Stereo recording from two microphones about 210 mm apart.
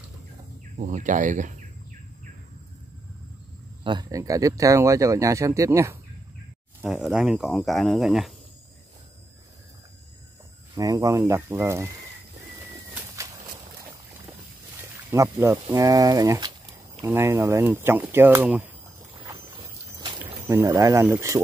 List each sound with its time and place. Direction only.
0.7 s speech: 35° right (ahead or behind)
3.8 s speech: 20° right (ahead or behind)
6.8 s speech: 5° right (ahead or behind)
10.7 s speech: 15° right (ahead or behind)
15.0 s speech: 15° right (ahead or behind)
20.2 s speech: 15° right (ahead or behind)